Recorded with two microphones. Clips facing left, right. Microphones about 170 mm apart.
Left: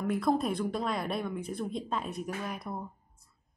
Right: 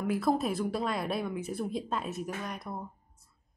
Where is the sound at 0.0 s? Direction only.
5° right (ahead or behind).